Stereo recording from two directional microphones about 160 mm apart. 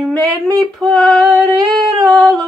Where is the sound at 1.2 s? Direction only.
20° right (ahead or behind).